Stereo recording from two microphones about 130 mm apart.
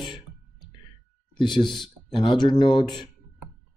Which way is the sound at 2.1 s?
40° left (ahead or behind).